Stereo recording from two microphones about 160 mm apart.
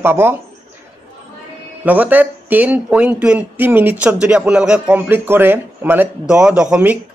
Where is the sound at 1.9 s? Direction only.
10° right (ahead or behind).